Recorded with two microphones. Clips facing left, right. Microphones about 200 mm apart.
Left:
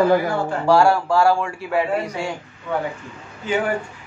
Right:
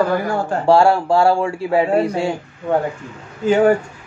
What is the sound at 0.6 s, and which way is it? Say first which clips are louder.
Speech: right 3 dB; 30° right (ahead or behind).